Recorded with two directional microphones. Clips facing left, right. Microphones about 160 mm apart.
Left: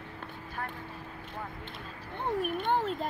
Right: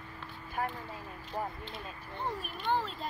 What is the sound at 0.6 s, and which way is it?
Vehicle, 30° right (ahead or behind).